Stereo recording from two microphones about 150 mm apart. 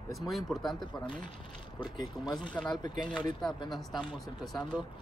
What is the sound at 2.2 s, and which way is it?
Speech, 30° left (ahead or behind).